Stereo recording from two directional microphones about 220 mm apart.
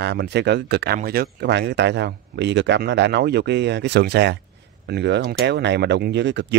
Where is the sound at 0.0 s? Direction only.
50° right (ahead or behind).